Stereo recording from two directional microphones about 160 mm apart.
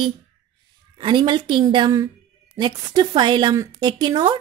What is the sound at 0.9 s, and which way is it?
A woman's voice, 30° right (ahead or behind).